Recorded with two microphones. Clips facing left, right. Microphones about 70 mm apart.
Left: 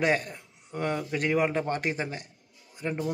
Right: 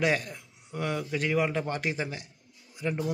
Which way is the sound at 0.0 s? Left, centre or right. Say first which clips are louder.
Left 1 dB; left.